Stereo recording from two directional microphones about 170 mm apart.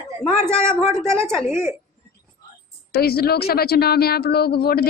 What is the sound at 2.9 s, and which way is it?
A woman's voice, 65° left (ahead or behind).